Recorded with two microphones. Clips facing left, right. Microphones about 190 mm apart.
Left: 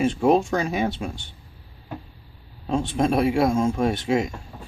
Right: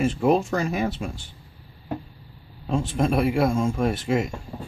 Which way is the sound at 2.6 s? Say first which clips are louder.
Left 1 dB; centre (ahead or behind).